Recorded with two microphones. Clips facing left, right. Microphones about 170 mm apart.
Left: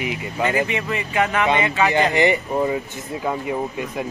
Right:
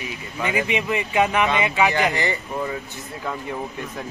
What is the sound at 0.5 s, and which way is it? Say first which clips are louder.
A man's voice: even; 15° right (ahead or behind).